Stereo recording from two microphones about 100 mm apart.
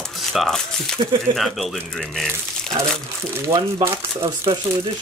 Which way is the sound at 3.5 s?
35° right (ahead or behind).